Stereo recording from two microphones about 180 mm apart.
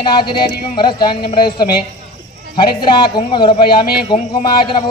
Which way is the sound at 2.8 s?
25° left (ahead or behind).